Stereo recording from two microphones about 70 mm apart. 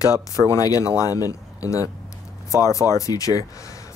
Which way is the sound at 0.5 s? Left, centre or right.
Left.